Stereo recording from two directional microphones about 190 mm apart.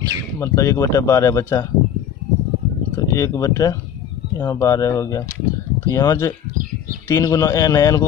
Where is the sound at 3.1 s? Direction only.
15° left (ahead or behind).